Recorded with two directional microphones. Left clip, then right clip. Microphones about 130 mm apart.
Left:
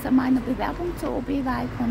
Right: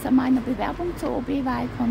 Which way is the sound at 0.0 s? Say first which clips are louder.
Right 1 dB; 15° right (ahead or behind).